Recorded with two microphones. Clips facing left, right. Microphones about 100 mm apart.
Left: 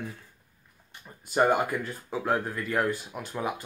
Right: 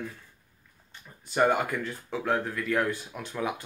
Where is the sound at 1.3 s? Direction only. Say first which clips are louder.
Left 1 dB; 10° left (ahead or behind).